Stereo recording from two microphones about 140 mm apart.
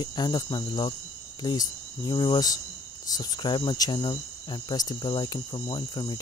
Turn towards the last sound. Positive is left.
turn(degrees=30)  # may be behind; listen again after turning